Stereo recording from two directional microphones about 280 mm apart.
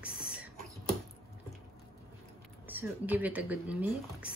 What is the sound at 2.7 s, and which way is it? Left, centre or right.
Speech, centre.